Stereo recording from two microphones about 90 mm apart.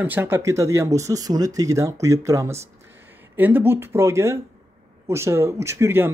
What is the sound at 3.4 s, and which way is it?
Speech, 20° right (ahead or behind).